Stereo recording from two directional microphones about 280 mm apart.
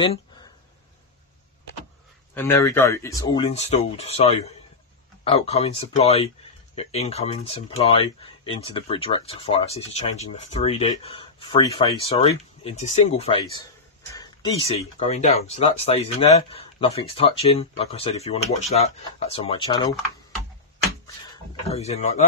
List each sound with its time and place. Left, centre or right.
2.3 s speech: centre
21.6 s speech: left